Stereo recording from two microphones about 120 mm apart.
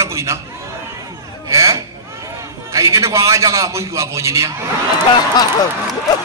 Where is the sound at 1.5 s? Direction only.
25° right (ahead or behind).